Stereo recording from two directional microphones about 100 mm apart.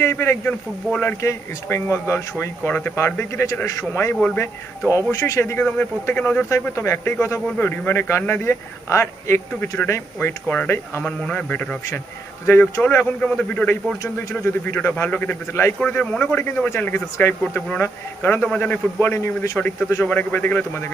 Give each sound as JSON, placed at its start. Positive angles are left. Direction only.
{"t": 0.0, "sound": "speech", "side_deg": 25}
{"t": 6.7, "sound": "speech", "side_deg": 30}
{"t": 12.4, "sound": "speech", "side_deg": 25}
{"t": 12.8, "sound": "speech", "side_deg": 15}
{"t": 15.8, "sound": "speech", "side_deg": 10}
{"t": 20.1, "sound": "speech", "side_deg": 20}